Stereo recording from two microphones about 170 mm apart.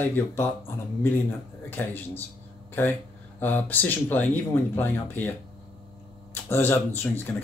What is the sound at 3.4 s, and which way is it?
Speech, 10° left (ahead or behind).